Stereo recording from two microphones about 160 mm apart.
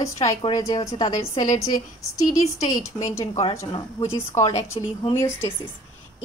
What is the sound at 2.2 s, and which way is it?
Speech, 20° left (ahead or behind).